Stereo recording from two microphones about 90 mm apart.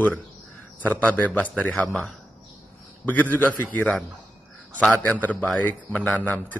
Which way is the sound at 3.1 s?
20° left (ahead or behind).